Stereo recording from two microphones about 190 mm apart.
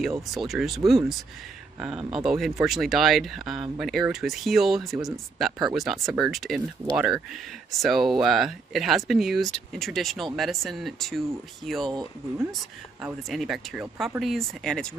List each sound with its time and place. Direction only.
0.3 s speech: centre (ahead or behind)
11.9 s speech: 20° right (ahead or behind)
12.4 s speech: centre (ahead or behind)